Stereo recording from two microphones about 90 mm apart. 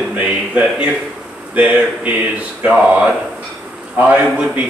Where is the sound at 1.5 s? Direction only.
20° right (ahead or behind).